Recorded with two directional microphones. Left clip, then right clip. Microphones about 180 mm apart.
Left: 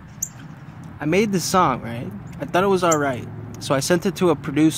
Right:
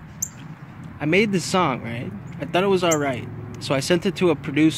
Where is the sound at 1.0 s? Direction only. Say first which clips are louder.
Even; 15° left (ahead or behind).